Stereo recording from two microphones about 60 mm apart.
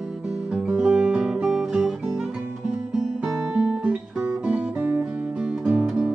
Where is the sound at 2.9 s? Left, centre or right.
Centre.